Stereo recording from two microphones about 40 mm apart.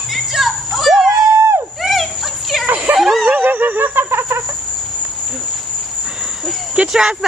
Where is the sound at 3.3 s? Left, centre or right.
Right.